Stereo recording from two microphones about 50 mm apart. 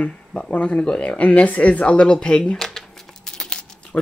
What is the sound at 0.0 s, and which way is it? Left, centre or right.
Speech, left.